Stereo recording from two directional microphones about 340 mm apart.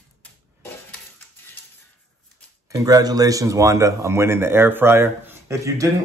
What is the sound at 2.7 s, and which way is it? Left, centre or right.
A man's voice, centre.